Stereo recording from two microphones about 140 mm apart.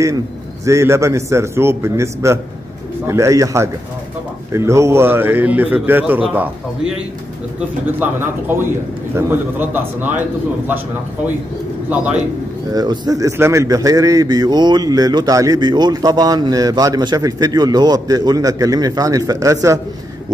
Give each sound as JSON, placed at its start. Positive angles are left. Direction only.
{"t": 0.7, "sound": "a man's voice", "side_deg": -20}
{"t": 7.8, "sound": "a man's voice", "side_deg": -15}
{"t": 12.7, "sound": "a man's voice", "side_deg": -30}